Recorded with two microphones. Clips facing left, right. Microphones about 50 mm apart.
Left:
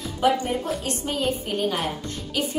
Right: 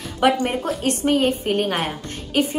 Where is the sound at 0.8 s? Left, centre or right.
Right.